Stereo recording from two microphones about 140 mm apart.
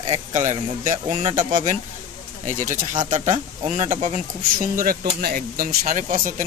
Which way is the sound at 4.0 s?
70° right (ahead or behind).